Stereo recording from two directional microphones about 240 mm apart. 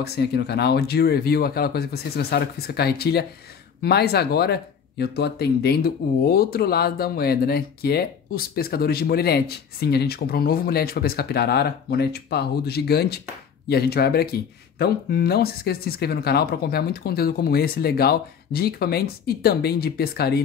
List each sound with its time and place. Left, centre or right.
0.0 s speech: left